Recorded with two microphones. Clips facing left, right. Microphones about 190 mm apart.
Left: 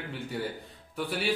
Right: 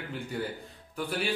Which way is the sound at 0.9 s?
Centre (ahead or behind).